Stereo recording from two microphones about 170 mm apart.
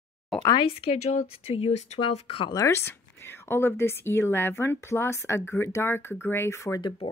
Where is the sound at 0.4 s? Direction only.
20° left (ahead or behind).